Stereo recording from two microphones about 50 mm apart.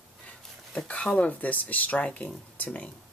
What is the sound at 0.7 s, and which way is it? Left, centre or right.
Speech, left.